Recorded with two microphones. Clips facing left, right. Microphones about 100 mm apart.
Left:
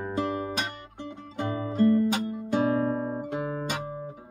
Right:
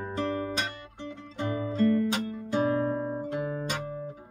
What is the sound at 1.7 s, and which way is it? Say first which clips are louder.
Music: left 3 dB; 30° left (ahead or behind).